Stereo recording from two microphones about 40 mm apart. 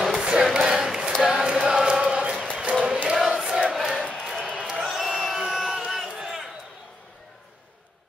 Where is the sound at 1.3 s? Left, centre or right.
Right.